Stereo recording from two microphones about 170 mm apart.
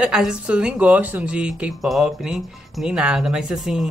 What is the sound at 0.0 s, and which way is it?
Speech, 5° right (ahead or behind).